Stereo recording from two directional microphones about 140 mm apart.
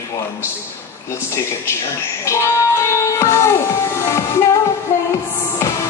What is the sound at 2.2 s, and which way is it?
Music, 20° left (ahead or behind).